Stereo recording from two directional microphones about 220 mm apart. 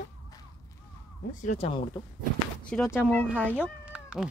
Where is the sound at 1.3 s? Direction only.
35° left (ahead or behind).